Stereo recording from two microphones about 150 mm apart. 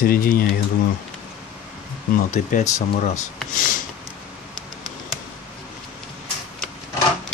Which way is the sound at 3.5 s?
60° left (ahead or behind).